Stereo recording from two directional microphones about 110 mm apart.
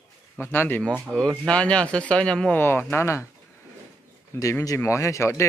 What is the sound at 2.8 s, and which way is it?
Speech, 20° left (ahead or behind).